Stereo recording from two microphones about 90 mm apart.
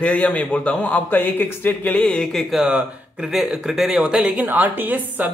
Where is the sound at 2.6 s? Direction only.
10° right (ahead or behind).